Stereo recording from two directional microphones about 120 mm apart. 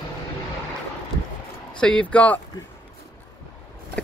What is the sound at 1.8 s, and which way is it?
Speech, 10° left (ahead or behind).